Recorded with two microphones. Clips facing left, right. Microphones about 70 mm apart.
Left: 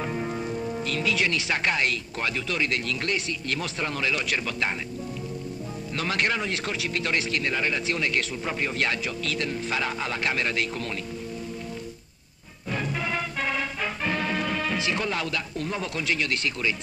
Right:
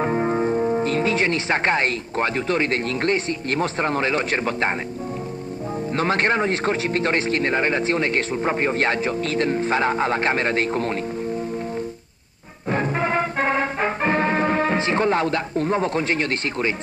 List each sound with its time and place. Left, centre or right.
0.0 s speech: right
5.9 s a man's voice: right
12.6 s music: right